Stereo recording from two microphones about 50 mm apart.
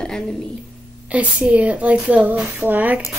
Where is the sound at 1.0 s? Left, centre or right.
Right.